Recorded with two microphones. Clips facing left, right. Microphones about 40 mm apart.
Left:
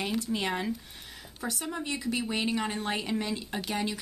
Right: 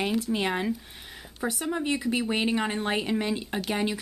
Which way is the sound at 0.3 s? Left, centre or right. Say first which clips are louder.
Right 3 dB; centre.